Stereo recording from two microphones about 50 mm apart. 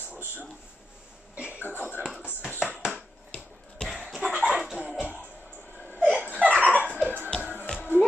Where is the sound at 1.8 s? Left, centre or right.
Left.